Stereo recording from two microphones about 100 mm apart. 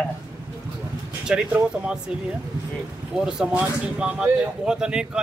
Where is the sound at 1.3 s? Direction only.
10° right (ahead or behind).